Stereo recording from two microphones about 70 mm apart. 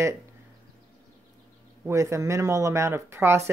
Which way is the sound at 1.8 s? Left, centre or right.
Right.